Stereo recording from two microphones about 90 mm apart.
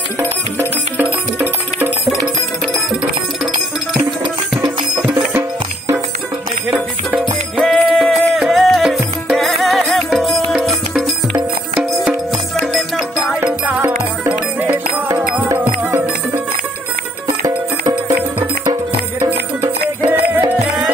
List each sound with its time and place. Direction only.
0.9 s music: 20° right (ahead or behind)
4.6 s music: 15° right (ahead or behind)
6.7 s music: 20° right (ahead or behind)
7.6 s music: 5° left (ahead or behind)
13.3 s music: 10° right (ahead or behind)
15.4 s music: 20° right (ahead or behind)
17.4 s music: 40° right (ahead or behind)
20.1 s music: 20° right (ahead or behind)